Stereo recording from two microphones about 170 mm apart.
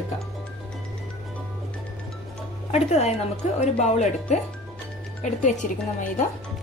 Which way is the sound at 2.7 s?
40° left (ahead or behind).